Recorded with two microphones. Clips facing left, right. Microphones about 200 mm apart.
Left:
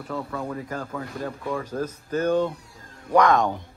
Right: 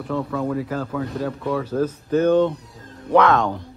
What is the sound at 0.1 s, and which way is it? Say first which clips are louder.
Speech: right 7 dB; 5° left (ahead or behind).